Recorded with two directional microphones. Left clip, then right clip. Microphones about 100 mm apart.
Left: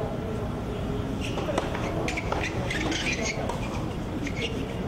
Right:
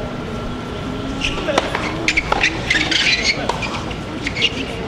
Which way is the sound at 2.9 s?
45° right (ahead or behind).